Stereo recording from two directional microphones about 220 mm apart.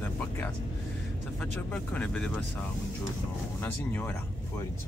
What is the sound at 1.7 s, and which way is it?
Speech, 5° left (ahead or behind).